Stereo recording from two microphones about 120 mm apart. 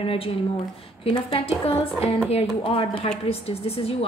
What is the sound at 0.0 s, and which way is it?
A woman's voice, 50° left (ahead or behind).